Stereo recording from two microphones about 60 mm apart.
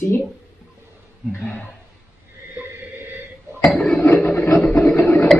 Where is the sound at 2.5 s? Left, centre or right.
Right.